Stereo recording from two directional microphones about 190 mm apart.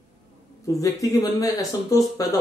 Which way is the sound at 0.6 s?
15° left (ahead or behind).